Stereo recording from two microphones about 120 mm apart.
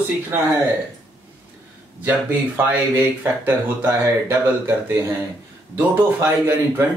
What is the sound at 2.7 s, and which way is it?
Speech, 15° right (ahead or behind).